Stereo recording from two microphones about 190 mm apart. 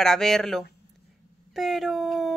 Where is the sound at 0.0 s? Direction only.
Centre (ahead or behind).